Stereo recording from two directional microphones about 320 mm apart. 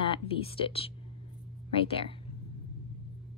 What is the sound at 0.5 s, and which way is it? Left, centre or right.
Speech, centre.